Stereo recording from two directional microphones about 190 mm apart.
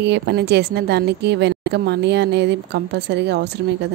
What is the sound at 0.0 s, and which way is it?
A woman's voice, 60° right (ahead or behind).